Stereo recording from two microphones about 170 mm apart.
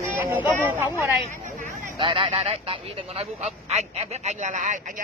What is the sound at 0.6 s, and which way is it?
Speech, 10° right (ahead or behind).